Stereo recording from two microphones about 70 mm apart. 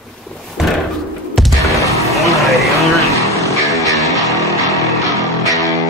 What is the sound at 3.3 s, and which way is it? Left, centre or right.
Music, right.